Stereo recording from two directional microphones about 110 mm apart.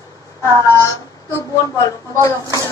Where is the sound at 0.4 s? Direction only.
30° left (ahead or behind).